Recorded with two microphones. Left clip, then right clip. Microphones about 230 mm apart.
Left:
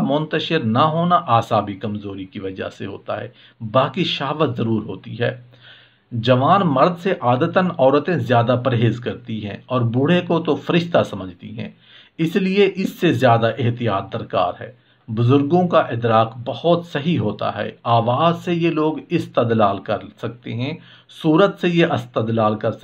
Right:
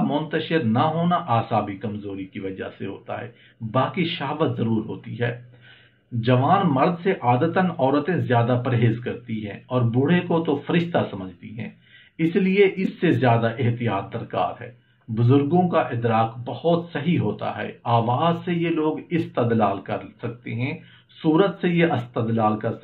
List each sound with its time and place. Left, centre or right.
0.1 s speech: left
6.2 s speech: left
12.2 s speech: left